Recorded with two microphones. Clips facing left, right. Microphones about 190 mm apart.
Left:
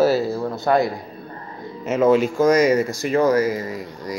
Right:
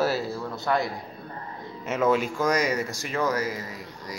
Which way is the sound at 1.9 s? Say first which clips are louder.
Left 7 dB; 40° left (ahead or behind).